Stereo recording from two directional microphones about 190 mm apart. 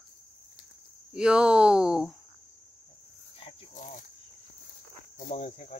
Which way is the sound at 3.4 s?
40° left (ahead or behind).